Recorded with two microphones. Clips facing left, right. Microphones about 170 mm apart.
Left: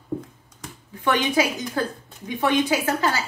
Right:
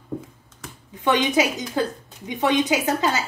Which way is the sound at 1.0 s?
20° right (ahead or behind).